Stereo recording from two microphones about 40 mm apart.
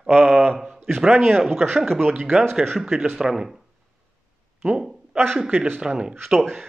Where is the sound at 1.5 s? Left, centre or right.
Right.